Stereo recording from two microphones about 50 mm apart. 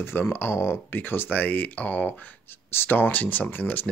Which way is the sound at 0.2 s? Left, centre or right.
Left.